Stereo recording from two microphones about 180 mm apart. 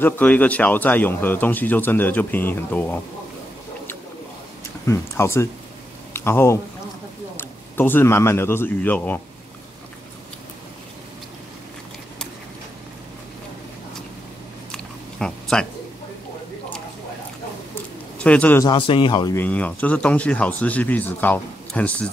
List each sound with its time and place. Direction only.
0.0 s speech: 10° left (ahead or behind)
4.8 s speech: 15° left (ahead or behind)
14.7 s a sound: 5° left (ahead or behind)
18.2 s speech: 10° left (ahead or behind)
18.6 s speech: 25° left (ahead or behind)
19.3 s speech: 10° left (ahead or behind)